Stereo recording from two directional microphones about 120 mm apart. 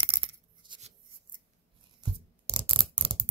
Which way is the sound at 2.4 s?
50° right (ahead or behind).